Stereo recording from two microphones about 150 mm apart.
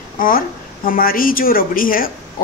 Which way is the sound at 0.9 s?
75° left (ahead or behind).